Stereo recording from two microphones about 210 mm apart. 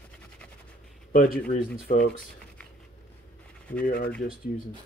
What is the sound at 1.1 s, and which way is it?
Speech, 40° left (ahead or behind).